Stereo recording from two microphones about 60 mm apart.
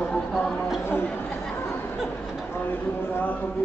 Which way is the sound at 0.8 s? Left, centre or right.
Left.